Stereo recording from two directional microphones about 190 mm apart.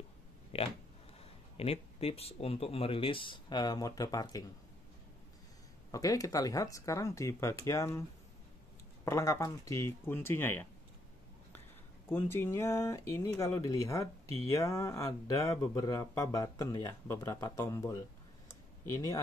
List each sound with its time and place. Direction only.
0.5 s speech: 30° left (ahead or behind)
5.9 s speech: 20° left (ahead or behind)
9.0 s speech: 15° left (ahead or behind)
12.1 s speech: 10° left (ahead or behind)
18.5 s a sound: 15° left (ahead or behind)